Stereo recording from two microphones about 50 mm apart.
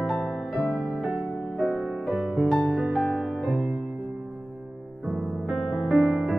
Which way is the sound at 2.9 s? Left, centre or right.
Centre.